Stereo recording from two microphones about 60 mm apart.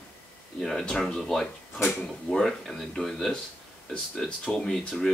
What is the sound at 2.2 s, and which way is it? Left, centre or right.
Speech, centre.